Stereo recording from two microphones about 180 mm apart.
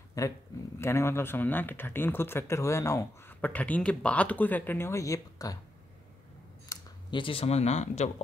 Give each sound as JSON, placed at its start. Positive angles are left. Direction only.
{"t": 0.2, "sound": "speech", "side_deg": 20}
{"t": 6.7, "sound": "speech", "side_deg": 25}